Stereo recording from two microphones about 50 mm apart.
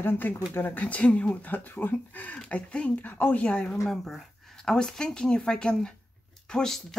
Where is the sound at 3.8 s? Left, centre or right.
Centre.